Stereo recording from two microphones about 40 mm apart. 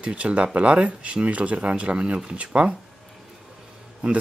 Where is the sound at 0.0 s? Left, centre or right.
Right.